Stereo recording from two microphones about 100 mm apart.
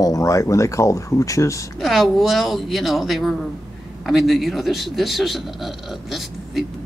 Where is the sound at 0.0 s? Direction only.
35° left (ahead or behind).